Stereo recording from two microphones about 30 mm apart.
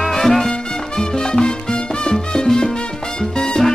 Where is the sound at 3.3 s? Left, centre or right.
Left.